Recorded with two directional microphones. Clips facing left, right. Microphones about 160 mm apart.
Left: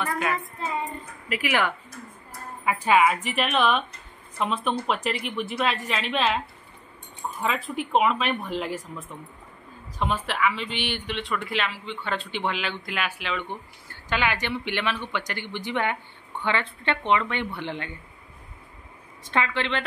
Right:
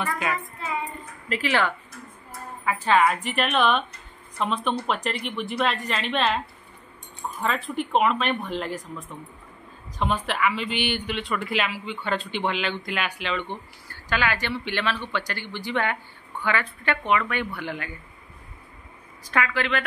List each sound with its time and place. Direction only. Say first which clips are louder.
1.3 s speech: right 1 dB; 10° left (ahead or behind)
7.4 s speech: right 1 dB; centre (ahead or behind)
13.8 s speech: even; 20° left (ahead or behind)
19.2 s speech: even; 25° left (ahead or behind)